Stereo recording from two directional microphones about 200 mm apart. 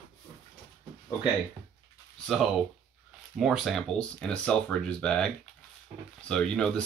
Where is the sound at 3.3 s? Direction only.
Centre (ahead or behind).